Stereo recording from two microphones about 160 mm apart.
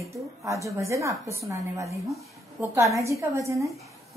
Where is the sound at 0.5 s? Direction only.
20° right (ahead or behind).